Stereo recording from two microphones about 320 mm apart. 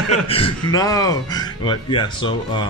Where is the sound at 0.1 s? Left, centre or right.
Centre.